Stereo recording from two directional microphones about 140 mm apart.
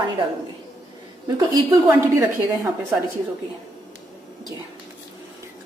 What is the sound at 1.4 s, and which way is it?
Speech, 20° right (ahead or behind).